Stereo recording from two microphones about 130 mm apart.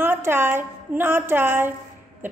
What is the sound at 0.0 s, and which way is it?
A woman's voice, 15° right (ahead or behind).